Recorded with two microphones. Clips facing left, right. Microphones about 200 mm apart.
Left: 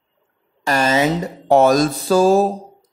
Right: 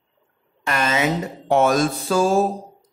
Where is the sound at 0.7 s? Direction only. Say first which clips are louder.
Left 5 dB; 35° left (ahead or behind).